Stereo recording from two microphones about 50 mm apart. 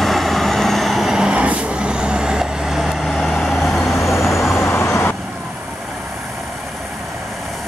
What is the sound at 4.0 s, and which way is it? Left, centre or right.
Vehicle, left.